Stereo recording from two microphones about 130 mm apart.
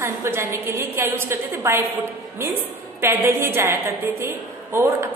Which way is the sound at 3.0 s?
20° right (ahead or behind).